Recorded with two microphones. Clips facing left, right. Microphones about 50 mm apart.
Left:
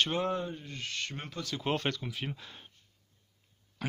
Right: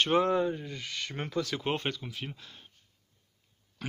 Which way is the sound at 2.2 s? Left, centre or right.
Centre.